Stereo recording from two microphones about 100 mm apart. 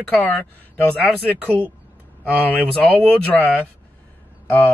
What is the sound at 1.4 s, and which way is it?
Speech, 15° right (ahead or behind).